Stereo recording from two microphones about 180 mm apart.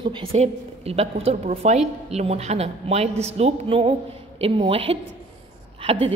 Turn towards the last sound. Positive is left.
turn(degrees=-30)  # may be behind; listen again after turning